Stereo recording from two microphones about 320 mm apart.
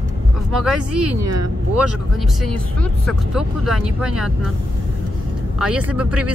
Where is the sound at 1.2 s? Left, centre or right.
Right.